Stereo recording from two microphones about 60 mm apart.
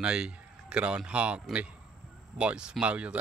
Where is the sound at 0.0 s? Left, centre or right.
Centre.